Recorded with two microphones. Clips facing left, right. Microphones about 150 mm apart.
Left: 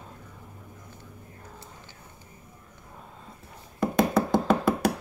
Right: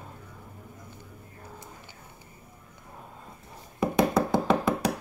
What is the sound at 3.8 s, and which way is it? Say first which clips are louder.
Hands: even; centre (ahead or behind).